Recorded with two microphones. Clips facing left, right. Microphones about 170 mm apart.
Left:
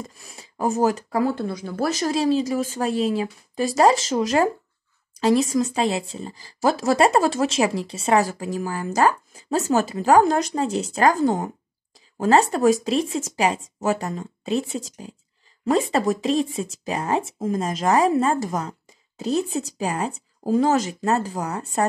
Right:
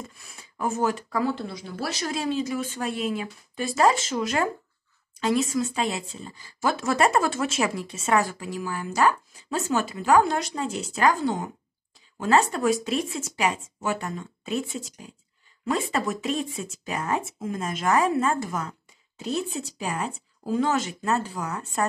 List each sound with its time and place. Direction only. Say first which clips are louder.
0.0 s speech: left 4 dB; 35° left (ahead or behind)